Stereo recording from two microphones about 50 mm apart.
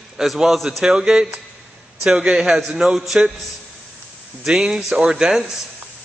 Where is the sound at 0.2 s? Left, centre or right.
Centre.